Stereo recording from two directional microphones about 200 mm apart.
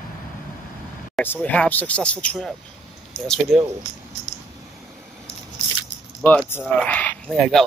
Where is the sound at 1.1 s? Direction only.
10° left (ahead or behind).